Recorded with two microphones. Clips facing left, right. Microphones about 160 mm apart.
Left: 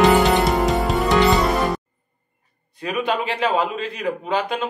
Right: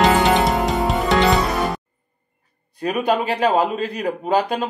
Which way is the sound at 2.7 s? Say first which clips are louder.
Right 3 dB; 40° right (ahead or behind).